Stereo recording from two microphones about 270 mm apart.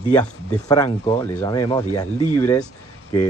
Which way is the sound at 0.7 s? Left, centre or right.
Centre.